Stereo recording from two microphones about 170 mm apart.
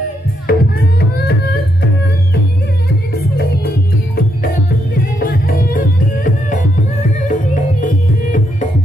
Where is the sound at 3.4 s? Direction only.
65° left (ahead or behind); by 8.7 s 50° left (ahead or behind).